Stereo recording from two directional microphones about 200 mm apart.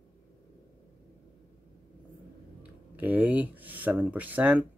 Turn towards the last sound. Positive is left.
turn(degrees=-10)  # may be behind; listen again after turning